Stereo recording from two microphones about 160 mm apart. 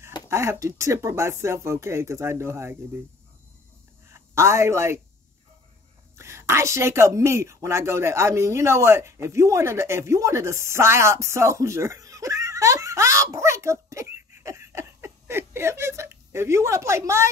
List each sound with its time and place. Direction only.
0.3 s speech: 15° right (ahead or behind)
4.1 s a woman's voice: 15° right (ahead or behind)
6.1 s a woman's voice: 15° right (ahead or behind)